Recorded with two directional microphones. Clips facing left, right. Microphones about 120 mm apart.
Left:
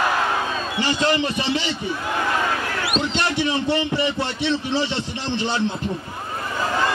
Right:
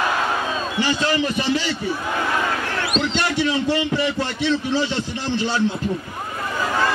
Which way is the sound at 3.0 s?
20° left (ahead or behind).